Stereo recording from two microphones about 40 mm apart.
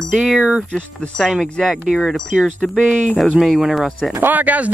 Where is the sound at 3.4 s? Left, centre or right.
Centre.